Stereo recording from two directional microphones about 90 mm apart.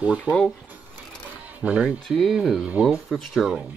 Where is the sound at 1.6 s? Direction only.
10° right (ahead or behind).